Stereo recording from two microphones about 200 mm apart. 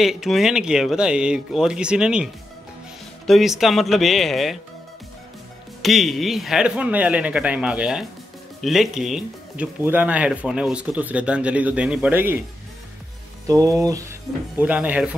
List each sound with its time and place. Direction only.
0.0 s speech: centre (ahead or behind)
5.8 s speech: centre (ahead or behind)
13.5 s speech: 15° right (ahead or behind)